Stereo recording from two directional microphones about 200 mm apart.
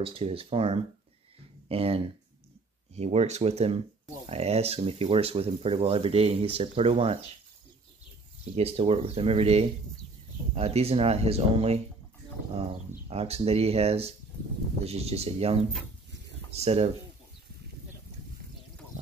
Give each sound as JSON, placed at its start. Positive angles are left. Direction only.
{"t": 0.0, "sound": "speech", "side_deg": -30}
{"t": 8.5, "sound": "speech", "side_deg": -30}
{"t": 13.1, "sound": "speech", "side_deg": -30}